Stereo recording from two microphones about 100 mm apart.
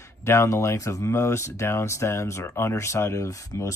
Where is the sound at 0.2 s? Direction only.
25° left (ahead or behind).